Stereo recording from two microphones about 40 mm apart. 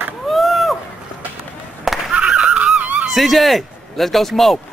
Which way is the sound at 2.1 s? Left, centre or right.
Right.